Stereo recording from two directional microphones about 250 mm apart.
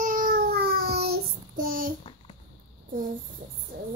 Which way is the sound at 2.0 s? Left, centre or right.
Left.